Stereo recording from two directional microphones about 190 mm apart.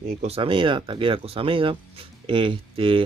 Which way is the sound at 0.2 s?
30° right (ahead or behind).